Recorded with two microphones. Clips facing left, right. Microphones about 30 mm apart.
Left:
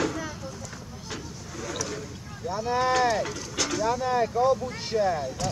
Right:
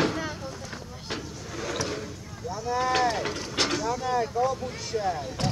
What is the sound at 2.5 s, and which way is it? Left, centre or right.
Speech, left.